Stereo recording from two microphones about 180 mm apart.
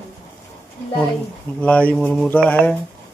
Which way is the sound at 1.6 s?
5° left (ahead or behind).